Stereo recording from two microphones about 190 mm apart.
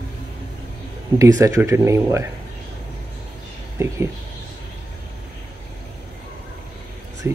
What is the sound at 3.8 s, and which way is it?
Speech, 15° right (ahead or behind).